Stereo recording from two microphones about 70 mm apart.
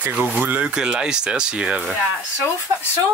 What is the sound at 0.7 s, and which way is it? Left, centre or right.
Speech, centre.